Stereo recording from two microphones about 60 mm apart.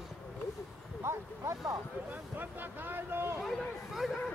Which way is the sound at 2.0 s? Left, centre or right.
Right.